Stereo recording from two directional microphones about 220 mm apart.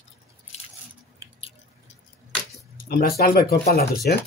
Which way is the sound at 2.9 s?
45° left (ahead or behind).